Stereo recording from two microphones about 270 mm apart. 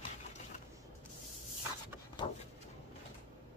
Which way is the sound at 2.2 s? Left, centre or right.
Centre.